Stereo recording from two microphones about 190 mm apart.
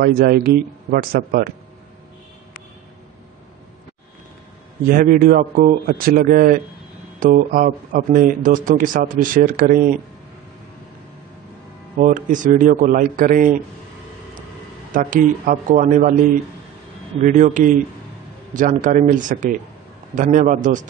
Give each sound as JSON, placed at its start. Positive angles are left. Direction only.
{"t": 0.0, "sound": "speech", "side_deg": -50}
{"t": 4.8, "sound": "speech", "side_deg": -45}
{"t": 12.0, "sound": "speech", "side_deg": -40}
{"t": 15.0, "sound": "speech", "side_deg": -45}
{"t": 17.2, "sound": "speech", "side_deg": -40}